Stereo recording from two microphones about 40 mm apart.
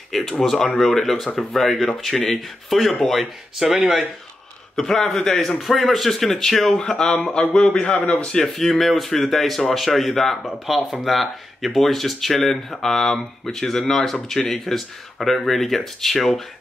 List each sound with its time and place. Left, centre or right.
0.4 s speech: centre
4.7 s speech: centre
5.6 s speech: centre
6.8 s speech: centre
8.5 s speech: centre